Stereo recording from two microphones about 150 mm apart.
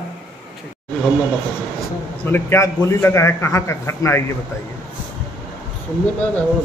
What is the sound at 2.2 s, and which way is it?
A man's voice, 15° left (ahead or behind).